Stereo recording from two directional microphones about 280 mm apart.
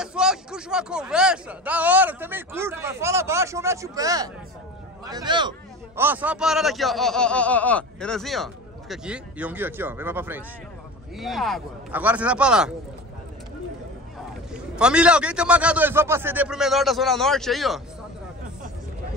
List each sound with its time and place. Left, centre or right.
0.0 s speech: centre
14.5 s speech: centre